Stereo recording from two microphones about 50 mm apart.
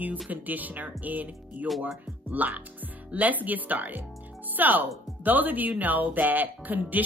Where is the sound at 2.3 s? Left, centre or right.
Right.